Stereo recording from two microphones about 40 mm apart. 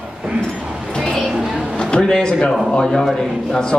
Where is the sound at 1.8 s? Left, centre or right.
Left.